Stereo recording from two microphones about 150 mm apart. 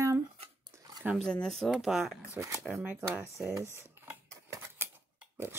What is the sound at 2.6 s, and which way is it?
Speech, 5° right (ahead or behind).